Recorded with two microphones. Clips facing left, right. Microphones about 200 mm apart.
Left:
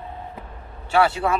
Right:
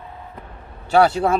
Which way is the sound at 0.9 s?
40° right (ahead or behind).